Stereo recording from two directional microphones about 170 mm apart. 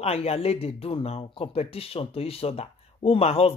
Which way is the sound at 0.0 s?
35° left (ahead or behind).